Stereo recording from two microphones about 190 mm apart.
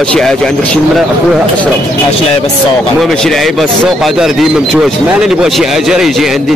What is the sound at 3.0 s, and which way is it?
Speech, centre (ahead or behind).